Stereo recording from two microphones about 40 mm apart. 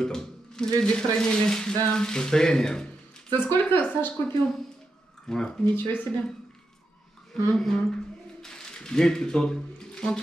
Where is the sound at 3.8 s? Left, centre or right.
Left.